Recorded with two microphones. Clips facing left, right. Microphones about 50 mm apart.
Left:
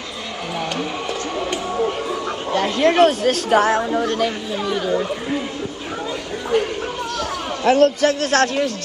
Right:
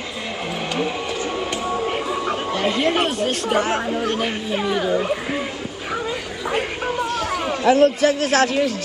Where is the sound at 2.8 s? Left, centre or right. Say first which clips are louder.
Left 10 dB; left.